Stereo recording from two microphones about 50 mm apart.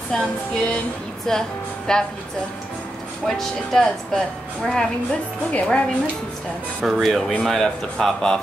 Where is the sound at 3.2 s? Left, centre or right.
Centre.